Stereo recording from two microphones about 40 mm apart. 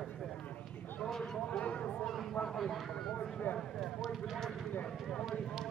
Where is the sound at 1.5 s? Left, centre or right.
Left.